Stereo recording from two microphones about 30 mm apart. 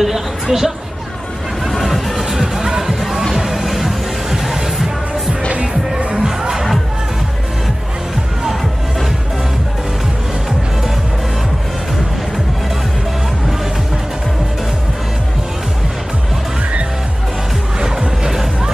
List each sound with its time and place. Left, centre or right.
0.0 s a sound: centre
1.8 s music: centre
2.2 s music: centre
17.7 s music: right